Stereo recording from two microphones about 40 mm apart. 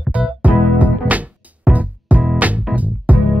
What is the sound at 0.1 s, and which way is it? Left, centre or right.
Music, right.